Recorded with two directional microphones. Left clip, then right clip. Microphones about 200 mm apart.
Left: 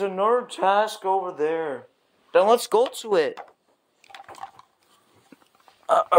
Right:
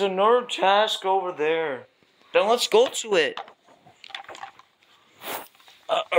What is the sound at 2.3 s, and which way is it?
Speech, 35° left (ahead or behind).